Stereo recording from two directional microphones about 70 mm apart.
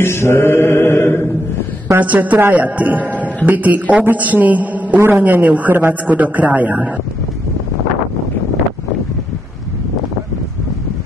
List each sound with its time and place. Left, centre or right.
0.0 s mantra: left
2.0 s speech: right